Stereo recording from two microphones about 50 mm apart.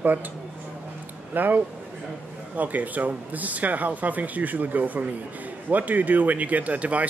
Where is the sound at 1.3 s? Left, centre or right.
Right.